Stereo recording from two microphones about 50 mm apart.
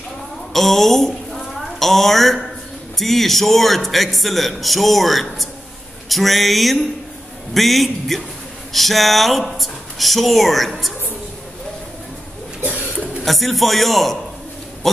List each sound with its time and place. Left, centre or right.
0.5 s a woman's voice: centre
12.6 s rodents: right
12.9 s a sound: right
13.2 s a man's voice: centre